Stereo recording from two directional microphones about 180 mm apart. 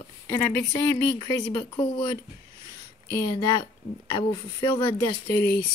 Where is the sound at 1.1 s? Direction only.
20° left (ahead or behind).